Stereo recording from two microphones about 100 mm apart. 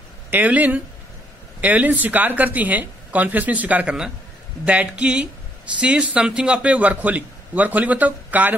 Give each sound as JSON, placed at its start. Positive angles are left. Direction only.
{"t": 0.3, "sound": "a man's voice", "side_deg": -15}